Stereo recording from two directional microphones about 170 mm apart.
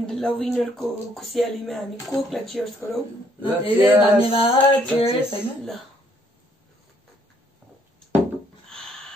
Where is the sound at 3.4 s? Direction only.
35° left (ahead or behind).